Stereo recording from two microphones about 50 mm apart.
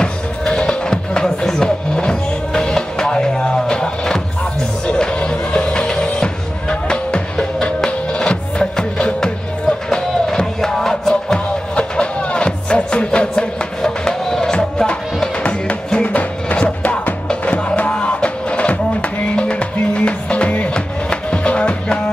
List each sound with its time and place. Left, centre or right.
0.0 s music: centre